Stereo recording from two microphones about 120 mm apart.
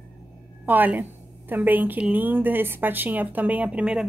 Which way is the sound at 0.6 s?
15° right (ahead or behind).